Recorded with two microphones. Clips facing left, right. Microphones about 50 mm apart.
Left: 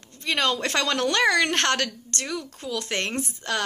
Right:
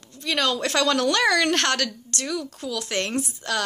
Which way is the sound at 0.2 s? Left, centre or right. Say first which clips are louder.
Even; left.